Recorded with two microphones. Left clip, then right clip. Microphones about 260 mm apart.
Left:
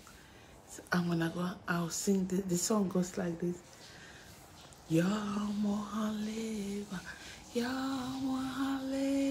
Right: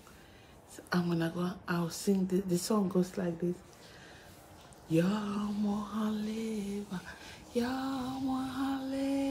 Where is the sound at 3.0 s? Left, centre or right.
Centre.